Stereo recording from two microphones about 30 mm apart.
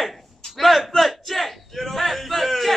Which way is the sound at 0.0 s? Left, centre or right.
Centre.